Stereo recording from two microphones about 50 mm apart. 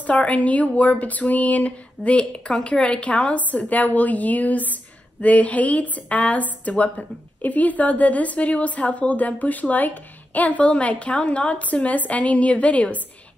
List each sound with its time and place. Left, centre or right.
0.0 s a woman's voice: left